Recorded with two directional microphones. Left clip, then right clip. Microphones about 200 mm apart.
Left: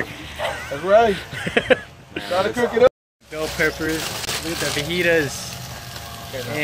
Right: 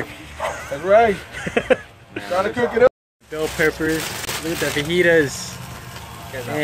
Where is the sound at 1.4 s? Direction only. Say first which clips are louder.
Left 2 dB; 10° right (ahead or behind).